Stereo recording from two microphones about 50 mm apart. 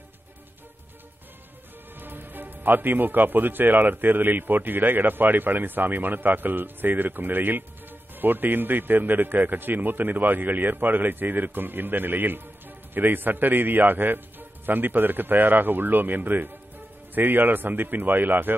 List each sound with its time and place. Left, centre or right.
2.0 s a man's voice: right